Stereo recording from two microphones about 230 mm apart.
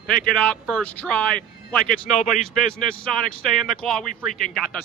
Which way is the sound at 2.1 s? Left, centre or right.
Left.